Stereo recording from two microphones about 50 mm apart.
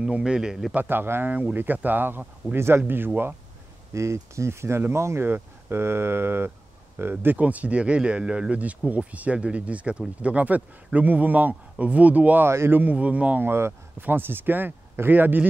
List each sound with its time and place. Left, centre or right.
0.0 s a man's voice: centre
0.7 s speech: right
1.5 s speech: right
2.5 s speech: right
3.9 s speech: right
5.3 s speech: right
7.3 s speech: right
12.4 s speech: right
12.7 s speech: right
13.4 s speech: right